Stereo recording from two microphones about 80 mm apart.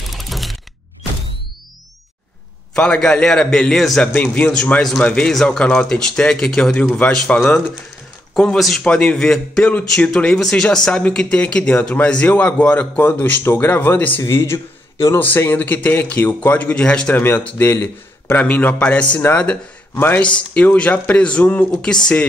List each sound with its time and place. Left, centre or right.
0.1 s a sound: centre
2.7 s speech: centre
4.1 s a man's voice: left
8.4 s a man's voice: centre; by 14.2 s left
14.3 s a man's voice: left
15.1 s a man's voice: left
17.1 s a man's voice: left; by 22.1 s centre